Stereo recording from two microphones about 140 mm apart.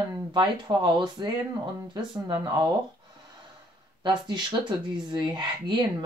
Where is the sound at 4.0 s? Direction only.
30° right (ahead or behind).